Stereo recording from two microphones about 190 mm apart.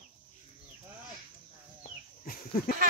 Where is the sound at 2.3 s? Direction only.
50° left (ahead or behind).